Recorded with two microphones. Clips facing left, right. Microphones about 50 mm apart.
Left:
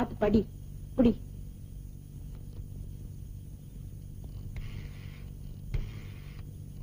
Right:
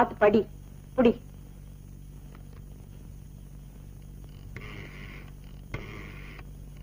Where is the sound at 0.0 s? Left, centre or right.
Right.